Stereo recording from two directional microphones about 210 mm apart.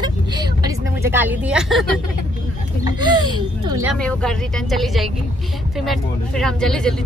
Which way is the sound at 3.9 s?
5° left (ahead or behind).